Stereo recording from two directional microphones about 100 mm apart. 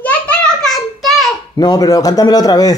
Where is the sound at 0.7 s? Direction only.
Centre (ahead or behind).